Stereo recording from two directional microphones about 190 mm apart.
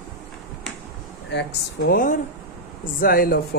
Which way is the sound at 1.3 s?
65° left (ahead or behind).